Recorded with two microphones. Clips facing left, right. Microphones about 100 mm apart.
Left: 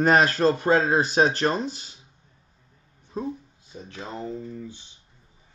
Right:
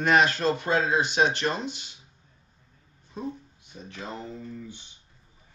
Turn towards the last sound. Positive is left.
turn(degrees=20)  # may be behind; listen again after turning